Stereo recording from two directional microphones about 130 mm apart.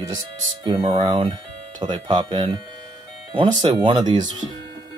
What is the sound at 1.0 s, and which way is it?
Speech, 40° right (ahead or behind).